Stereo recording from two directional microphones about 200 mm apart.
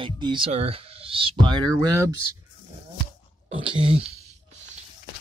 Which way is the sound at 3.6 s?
25° right (ahead or behind).